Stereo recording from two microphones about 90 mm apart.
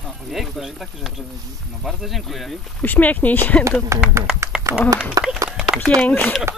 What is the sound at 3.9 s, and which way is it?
Speech, 30° right (ahead or behind).